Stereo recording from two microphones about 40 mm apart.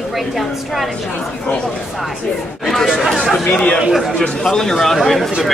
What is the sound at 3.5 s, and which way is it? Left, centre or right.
Speech, left.